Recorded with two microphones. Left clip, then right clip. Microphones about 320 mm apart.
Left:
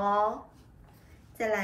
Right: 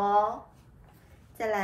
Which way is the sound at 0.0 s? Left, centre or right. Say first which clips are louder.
Right 2 dB; centre.